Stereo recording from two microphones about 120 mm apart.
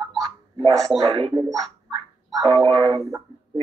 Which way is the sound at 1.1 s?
50° right (ahead or behind).